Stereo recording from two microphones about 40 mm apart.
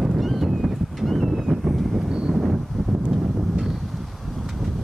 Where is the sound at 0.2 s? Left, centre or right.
Centre.